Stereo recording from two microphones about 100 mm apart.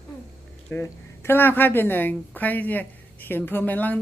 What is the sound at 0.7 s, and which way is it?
A woman's voice, 25° left (ahead or behind).